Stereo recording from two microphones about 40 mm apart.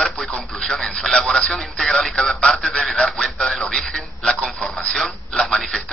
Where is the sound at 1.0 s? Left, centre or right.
Centre.